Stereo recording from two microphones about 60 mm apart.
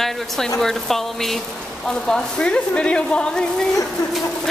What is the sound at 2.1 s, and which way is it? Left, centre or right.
Speech, centre.